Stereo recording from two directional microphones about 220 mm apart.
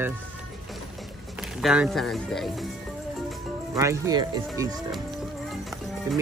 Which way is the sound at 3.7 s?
15° right (ahead or behind).